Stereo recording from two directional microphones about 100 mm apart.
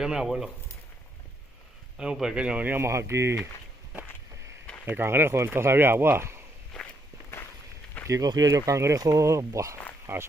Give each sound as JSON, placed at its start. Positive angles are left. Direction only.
{"t": 0.0, "sound": "speech", "side_deg": -5}
{"t": 2.0, "sound": "speech", "side_deg": -5}
{"t": 4.8, "sound": "speech", "side_deg": -20}
{"t": 8.1, "sound": "speech", "side_deg": -40}